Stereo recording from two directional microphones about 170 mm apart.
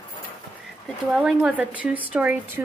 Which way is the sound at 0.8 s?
5° right (ahead or behind).